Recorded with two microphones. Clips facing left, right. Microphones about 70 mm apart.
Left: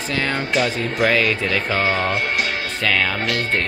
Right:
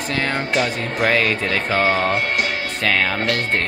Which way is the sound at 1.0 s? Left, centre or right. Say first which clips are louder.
Even; right.